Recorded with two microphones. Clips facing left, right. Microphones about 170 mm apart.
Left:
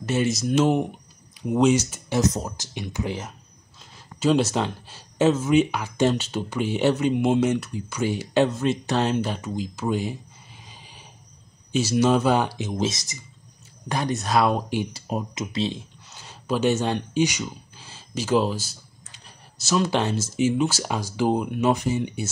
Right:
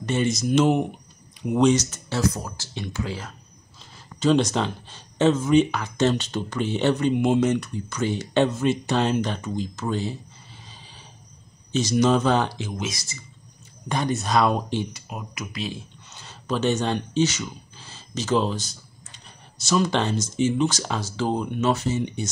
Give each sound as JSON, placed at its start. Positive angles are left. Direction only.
{"t": 0.0, "sound": "speech", "side_deg": 5}
{"t": 3.9, "sound": "speech", "side_deg": 5}
{"t": 10.7, "sound": "a sound", "side_deg": 15}
{"t": 11.7, "sound": "speech", "side_deg": 5}
{"t": 12.7, "sound": "speech", "side_deg": 30}
{"t": 13.8, "sound": "speech", "side_deg": 0}
{"t": 14.9, "sound": "speech", "side_deg": 30}
{"t": 16.1, "sound": "speech", "side_deg": 10}